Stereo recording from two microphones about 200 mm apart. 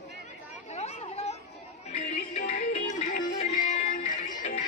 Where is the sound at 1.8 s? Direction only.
30° left (ahead or behind).